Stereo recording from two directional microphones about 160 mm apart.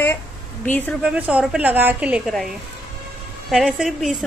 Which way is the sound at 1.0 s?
5° right (ahead or behind).